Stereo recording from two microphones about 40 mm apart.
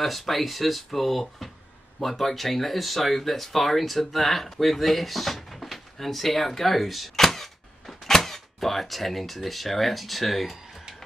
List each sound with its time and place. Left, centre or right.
0.0 s speech: centre